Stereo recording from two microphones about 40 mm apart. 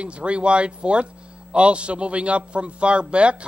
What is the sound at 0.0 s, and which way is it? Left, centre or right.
A man's voice, right.